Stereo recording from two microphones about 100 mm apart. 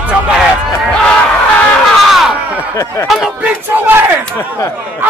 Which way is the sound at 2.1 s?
5° right (ahead or behind).